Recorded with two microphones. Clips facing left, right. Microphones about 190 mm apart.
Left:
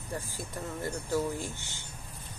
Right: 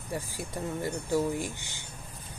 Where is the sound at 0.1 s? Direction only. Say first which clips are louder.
Right 3 dB; 15° right (ahead or behind).